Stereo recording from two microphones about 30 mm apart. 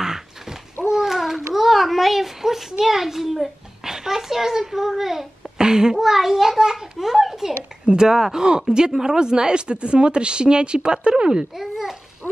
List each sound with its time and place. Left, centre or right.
0.0 s a sound: centre
3.8 s a child's voice: centre
5.6 s a child's voice: right
5.9 s a child's voice: centre
7.8 s speech: right
8.1 s speech: centre
11.5 s a child's voice: centre